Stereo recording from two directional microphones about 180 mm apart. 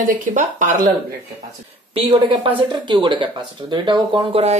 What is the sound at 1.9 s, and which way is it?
Speech, 30° right (ahead or behind).